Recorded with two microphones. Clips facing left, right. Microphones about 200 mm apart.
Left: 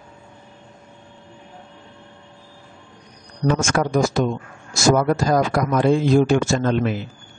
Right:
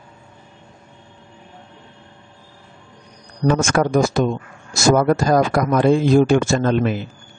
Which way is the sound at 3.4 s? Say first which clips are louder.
Right 3 dB; 55° right (ahead or behind).